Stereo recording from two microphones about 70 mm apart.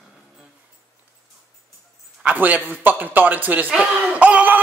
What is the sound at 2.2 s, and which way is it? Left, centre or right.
Speech, right.